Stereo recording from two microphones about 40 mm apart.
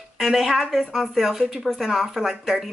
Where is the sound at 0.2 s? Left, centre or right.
Centre.